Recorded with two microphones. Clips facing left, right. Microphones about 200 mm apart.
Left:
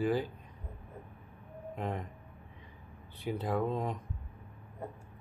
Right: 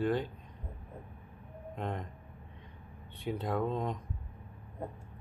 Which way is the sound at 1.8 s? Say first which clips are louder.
Left 1 dB; 5° left (ahead or behind).